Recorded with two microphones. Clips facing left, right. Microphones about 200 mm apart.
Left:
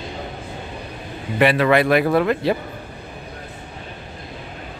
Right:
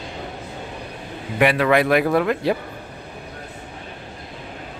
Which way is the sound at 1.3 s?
5° right (ahead or behind).